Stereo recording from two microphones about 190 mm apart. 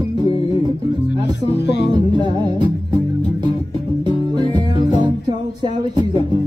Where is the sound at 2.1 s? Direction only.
25° right (ahead or behind).